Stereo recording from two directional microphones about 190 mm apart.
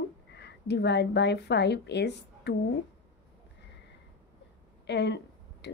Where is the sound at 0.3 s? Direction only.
65° left (ahead or behind).